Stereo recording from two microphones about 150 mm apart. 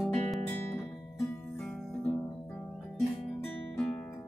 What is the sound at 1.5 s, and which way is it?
Music, 5° left (ahead or behind).